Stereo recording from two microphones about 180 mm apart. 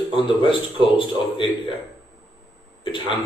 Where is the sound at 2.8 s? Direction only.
25° left (ahead or behind).